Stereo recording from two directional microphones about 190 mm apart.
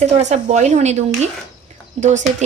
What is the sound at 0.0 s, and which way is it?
Speech, 35° right (ahead or behind).